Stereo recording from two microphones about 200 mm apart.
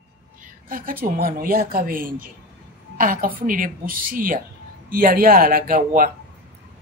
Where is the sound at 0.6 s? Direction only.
45° right (ahead or behind).